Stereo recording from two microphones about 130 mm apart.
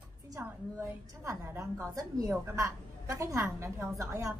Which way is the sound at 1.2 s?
20° right (ahead or behind).